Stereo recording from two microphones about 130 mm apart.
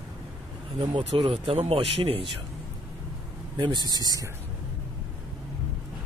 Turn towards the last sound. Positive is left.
turn(degrees=-30)  # may be behind; listen again after turning